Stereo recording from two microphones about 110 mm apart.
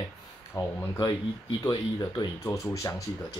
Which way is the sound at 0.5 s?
30° left (ahead or behind).